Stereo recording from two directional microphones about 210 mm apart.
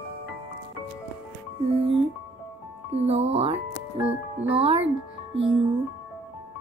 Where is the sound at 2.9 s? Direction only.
30° right (ahead or behind).